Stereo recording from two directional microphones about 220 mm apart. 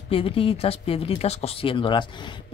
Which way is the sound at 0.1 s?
25° left (ahead or behind).